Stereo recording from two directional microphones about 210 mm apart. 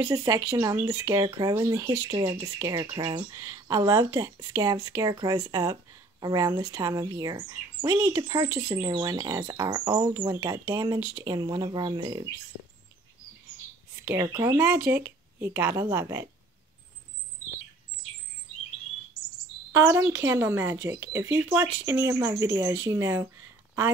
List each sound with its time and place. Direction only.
0.0 s speech: 15° right (ahead or behind)
14.0 s speech: 15° right (ahead or behind)
19.7 s speech: 10° right (ahead or behind)